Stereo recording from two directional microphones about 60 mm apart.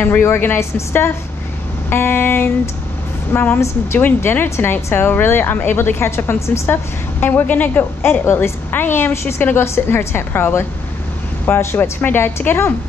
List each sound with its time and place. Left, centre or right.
0.2 s a woman's voice: left
6.7 s a woman's voice: left